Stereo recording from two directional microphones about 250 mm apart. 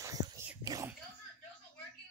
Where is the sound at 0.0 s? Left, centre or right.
Centre.